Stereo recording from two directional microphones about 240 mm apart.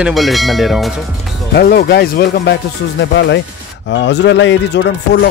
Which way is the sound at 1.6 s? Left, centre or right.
Left.